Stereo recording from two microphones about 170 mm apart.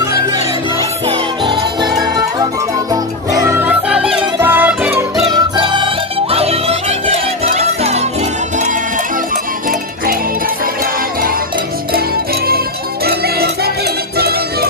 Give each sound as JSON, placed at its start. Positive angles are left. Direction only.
{"t": 1.0, "sound": "music", "side_deg": -30}
{"t": 5.2, "sound": "music", "side_deg": -30}
{"t": 9.3, "sound": "music", "side_deg": -55}
{"t": 12.4, "sound": "music", "side_deg": -65}